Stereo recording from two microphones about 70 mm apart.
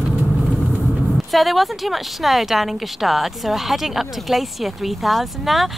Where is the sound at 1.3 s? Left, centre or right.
Centre.